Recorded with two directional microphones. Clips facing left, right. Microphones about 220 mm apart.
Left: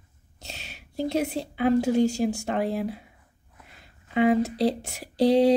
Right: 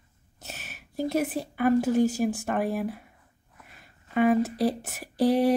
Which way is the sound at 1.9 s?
5° right (ahead or behind).